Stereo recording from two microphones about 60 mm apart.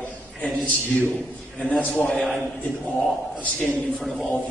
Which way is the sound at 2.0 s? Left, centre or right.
Centre.